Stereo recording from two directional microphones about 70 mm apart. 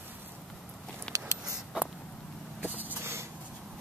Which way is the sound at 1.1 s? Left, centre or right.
Centre.